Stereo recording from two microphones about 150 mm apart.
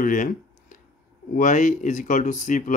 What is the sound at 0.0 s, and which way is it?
Speech, 60° left (ahead or behind).